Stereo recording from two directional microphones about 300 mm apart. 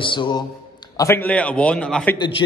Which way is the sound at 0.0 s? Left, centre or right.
Centre.